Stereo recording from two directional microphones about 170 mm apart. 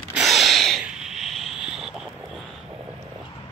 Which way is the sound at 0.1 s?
Centre (ahead or behind).